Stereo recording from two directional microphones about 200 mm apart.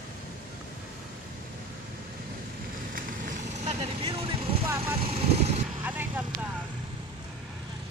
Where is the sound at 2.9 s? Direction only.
40° right (ahead or behind).